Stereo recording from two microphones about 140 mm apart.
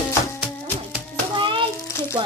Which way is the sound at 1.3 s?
35° right (ahead or behind).